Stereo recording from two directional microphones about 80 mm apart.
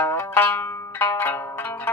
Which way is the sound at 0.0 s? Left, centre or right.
Left.